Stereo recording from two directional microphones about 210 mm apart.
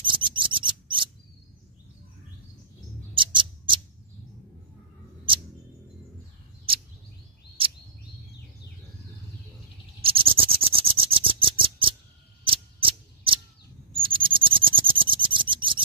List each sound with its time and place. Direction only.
0.0 s scissors: 25° right (ahead or behind)
3.3 s scissors: 25° right (ahead or behind)
10.0 s a sound: 25° right (ahead or behind)
13.9 s owl: 25° right (ahead or behind)